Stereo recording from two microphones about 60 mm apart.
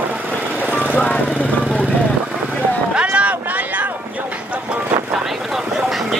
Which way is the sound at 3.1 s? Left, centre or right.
Right.